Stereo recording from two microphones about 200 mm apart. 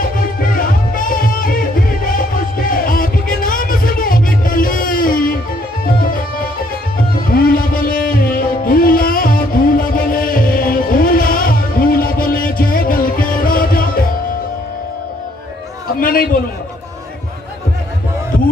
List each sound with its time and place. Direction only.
0.6 s music: 45° left (ahead or behind)
7.2 s music: 45° left (ahead or behind)
16.0 s a sound: 45° left (ahead or behind)